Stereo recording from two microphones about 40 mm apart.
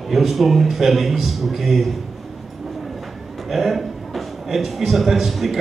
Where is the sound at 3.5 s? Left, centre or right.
Centre.